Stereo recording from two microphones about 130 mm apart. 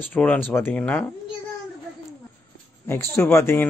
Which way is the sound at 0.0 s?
10° left (ahead or behind).